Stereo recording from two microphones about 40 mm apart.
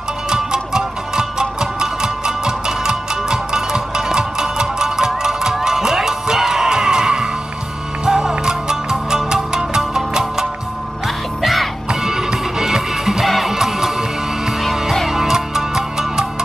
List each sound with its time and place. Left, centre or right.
0.3 s music: centre
11.4 s music: centre
11.9 s music: centre